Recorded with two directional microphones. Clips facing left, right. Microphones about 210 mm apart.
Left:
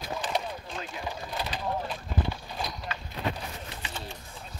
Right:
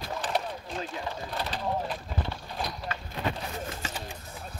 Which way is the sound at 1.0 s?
5° left (ahead or behind).